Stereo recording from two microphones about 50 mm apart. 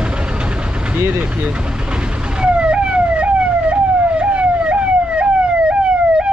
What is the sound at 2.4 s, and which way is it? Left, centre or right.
Emergency vehicle, right.